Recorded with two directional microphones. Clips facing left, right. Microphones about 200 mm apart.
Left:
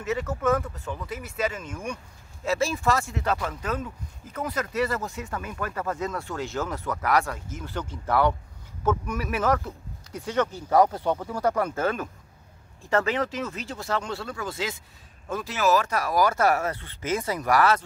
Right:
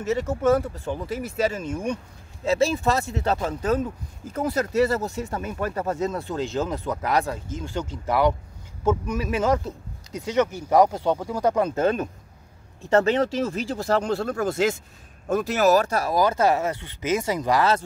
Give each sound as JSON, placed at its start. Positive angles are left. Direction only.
{"t": 0.0, "sound": "speech", "side_deg": -25}